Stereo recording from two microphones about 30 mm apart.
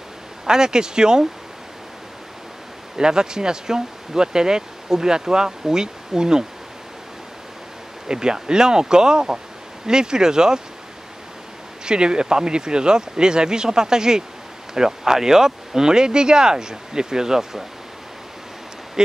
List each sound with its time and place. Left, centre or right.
0.5 s speech: right
3.0 s speech: right
8.1 s speech: right
11.8 s speech: right
19.0 s speech: right